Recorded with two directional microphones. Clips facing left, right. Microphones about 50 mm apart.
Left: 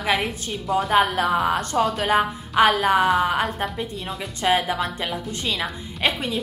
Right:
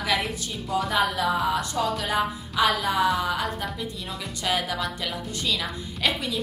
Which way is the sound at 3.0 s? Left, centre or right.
Left.